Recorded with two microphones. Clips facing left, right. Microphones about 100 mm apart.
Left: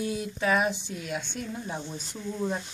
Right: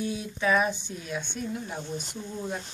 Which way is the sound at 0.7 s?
90° left.